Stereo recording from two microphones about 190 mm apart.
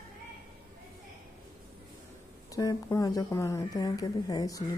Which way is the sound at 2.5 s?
20° left (ahead or behind).